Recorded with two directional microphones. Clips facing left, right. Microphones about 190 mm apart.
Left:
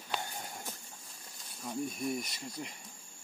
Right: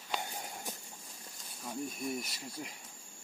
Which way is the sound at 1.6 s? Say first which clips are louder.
Left 3 dB; centre (ahead or behind).